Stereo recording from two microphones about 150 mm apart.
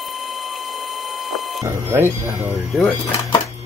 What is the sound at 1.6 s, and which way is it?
Speech, 15° right (ahead or behind).